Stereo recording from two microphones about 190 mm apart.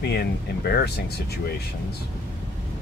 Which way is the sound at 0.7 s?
60° left (ahead or behind).